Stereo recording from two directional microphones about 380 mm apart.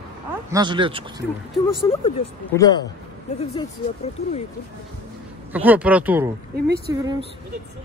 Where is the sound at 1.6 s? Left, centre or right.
Centre.